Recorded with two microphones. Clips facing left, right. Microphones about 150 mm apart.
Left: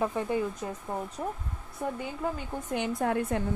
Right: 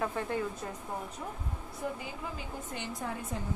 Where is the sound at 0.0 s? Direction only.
15° left (ahead or behind).